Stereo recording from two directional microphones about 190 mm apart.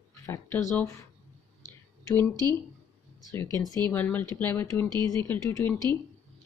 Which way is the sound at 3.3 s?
15° left (ahead or behind).